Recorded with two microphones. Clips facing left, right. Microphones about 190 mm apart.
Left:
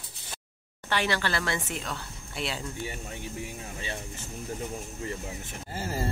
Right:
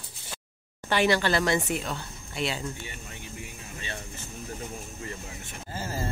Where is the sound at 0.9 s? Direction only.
15° right (ahead or behind).